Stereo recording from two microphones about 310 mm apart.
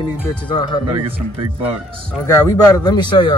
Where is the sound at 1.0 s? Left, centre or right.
Centre.